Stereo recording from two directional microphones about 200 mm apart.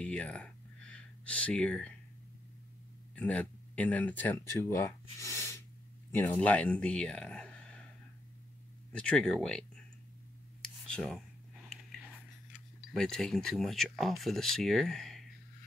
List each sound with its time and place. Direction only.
0.0 s speech: 5° left (ahead or behind)
3.2 s speech: 5° left (ahead or behind)
5.2 s sneeze: 15° left (ahead or behind)
6.1 s speech: 10° left (ahead or behind)
8.9 s speech: 5° left (ahead or behind)
10.6 s a sound: 5° left (ahead or behind)
12.5 s speech: centre (ahead or behind)